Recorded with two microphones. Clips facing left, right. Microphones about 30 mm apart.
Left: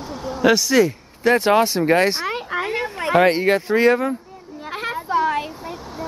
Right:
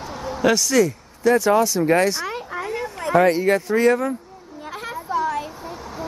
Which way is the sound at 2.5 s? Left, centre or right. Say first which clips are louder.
Left 4 dB; left.